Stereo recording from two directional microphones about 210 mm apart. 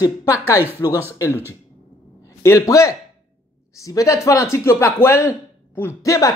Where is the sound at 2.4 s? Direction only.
15° left (ahead or behind).